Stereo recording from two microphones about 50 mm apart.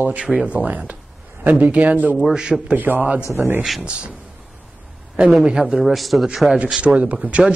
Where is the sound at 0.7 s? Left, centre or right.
Right.